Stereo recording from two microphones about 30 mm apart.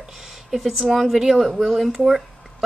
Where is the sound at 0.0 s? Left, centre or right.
Centre.